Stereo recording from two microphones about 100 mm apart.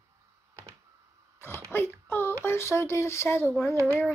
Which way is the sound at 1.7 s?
20° left (ahead or behind).